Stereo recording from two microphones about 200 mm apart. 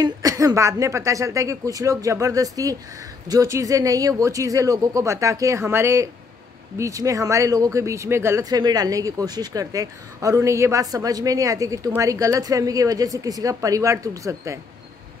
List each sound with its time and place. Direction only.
0.0 s speech: 15° right (ahead or behind)